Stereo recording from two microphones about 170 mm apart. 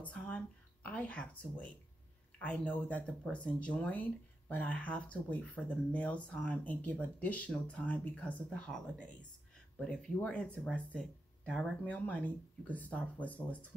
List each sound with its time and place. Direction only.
0.0 s speech: 10° left (ahead or behind)